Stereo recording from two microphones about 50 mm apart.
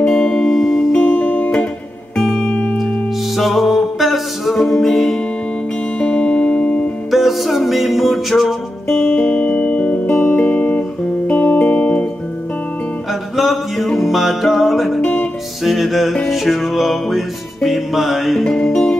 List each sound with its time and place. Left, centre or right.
0.0 s music: centre
0.9 s music: left
2.1 s music: centre
2.5 s music: left
3.3 s music: centre
5.9 s music: left
7.1 s music: centre
9.0 s music: left
13.4 s music: centre